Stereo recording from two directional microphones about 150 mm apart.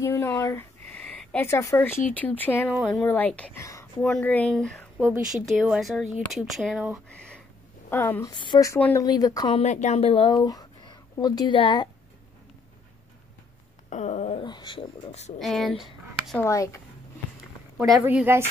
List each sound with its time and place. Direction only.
0.0 s speech: 15° left (ahead or behind)
2.7 s speech: centre (ahead or behind)
3.0 s speech: 10° left (ahead or behind)
7.9 s a woman's voice: 15° left (ahead or behind)
8.7 s speech: 10° left (ahead or behind)
9.0 s a woman's voice: 25° left (ahead or behind)
9.5 s a woman's voice: 50° left (ahead or behind); by 11.9 s 30° left (ahead or behind)
13.8 s a sound: 50° left (ahead or behind)
14.4 s a woman's voice: 30° left (ahead or behind)
15.0 s speech: 50° left (ahead or behind)
15.3 s speech: centre (ahead or behind)
16.3 s a woman's voice: 20° left (ahead or behind)
18.0 s speech: 15° right (ahead or behind)